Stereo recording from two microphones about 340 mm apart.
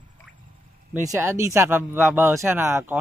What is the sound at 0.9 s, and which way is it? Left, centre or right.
Speech, centre.